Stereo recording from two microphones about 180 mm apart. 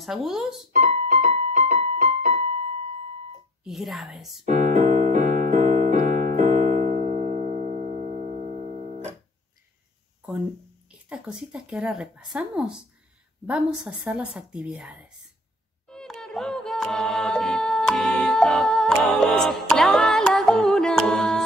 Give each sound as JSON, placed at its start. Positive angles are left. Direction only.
{"t": 0.0, "sound": "speech", "side_deg": 0}
{"t": 0.7, "sound": "keyboard", "side_deg": -40}
{"t": 3.6, "sound": "speech", "side_deg": 0}
{"t": 4.5, "sound": "electric piano", "side_deg": -40}
{"t": 10.9, "sound": "speech", "side_deg": -5}
{"t": 15.9, "sound": "a capella", "side_deg": 5}